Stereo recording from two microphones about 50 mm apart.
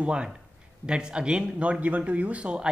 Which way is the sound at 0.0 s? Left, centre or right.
Right.